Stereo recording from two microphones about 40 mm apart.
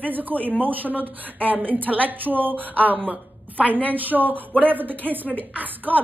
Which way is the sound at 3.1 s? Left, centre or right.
Right.